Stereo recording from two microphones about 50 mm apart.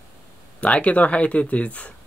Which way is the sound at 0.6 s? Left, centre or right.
Left.